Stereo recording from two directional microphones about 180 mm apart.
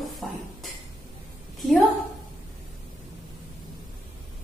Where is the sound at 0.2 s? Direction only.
Centre (ahead or behind).